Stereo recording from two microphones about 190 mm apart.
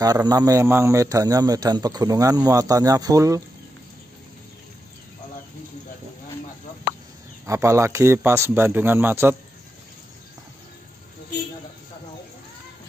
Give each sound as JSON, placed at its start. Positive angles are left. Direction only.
{"t": 0.0, "sound": "speech", "side_deg": -20}
{"t": 7.4, "sound": "a man's voice", "side_deg": -15}